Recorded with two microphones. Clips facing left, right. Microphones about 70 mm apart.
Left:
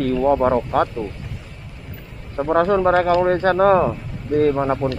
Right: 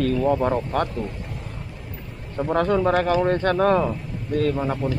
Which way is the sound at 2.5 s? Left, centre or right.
Centre.